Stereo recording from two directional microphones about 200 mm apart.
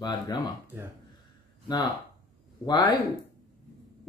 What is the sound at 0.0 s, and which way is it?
Speech, 20° left (ahead or behind).